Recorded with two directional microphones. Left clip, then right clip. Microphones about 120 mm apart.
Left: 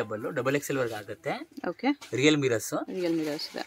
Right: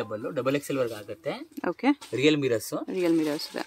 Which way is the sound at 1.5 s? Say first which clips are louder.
Right 6 dB; 25° right (ahead or behind).